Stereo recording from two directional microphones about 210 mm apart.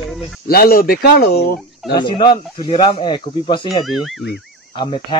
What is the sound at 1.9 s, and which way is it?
Speech, 20° left (ahead or behind).